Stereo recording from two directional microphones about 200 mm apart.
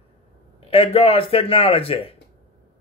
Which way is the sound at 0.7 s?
30° left (ahead or behind).